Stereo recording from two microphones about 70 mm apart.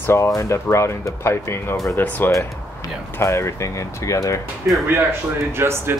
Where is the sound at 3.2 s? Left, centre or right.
Left.